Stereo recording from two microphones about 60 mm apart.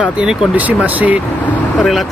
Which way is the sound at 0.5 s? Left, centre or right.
Right.